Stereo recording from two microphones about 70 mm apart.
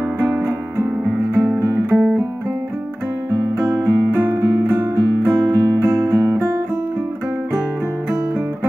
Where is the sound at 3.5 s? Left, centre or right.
Right.